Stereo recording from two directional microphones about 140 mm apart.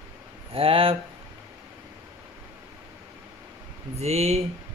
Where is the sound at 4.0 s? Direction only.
50° right (ahead or behind).